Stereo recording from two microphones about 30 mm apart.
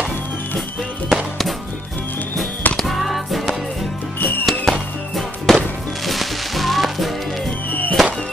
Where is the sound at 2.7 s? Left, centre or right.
Centre.